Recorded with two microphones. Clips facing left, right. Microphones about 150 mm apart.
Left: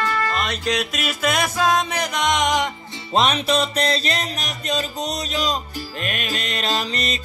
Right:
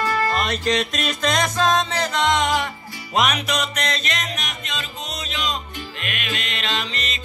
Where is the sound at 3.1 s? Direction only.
30° left (ahead or behind).